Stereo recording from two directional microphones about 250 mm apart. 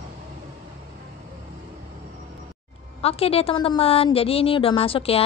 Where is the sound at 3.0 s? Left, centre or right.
Left.